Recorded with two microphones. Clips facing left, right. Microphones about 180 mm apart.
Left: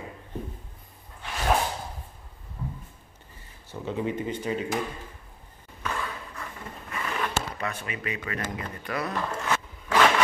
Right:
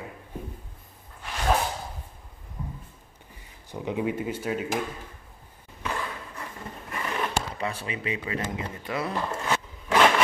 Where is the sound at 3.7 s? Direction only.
10° right (ahead or behind).